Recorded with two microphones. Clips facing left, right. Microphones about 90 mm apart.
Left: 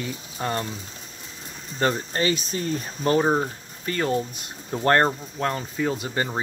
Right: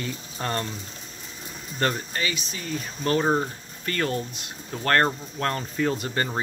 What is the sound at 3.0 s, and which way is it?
Speech, 20° left (ahead or behind).